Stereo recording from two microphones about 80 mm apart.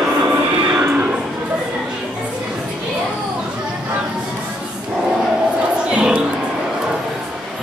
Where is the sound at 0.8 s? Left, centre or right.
Right.